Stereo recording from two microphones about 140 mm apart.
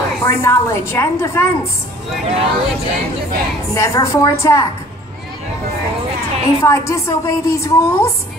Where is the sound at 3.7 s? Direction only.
20° left (ahead or behind).